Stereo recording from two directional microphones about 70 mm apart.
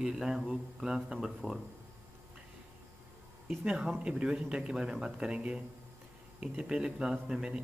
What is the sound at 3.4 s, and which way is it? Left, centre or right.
A man's voice, centre.